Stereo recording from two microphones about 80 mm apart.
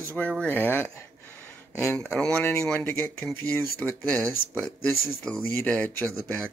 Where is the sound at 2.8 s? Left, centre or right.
Left.